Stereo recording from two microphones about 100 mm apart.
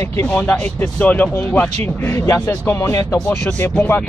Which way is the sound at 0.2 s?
10° left (ahead or behind).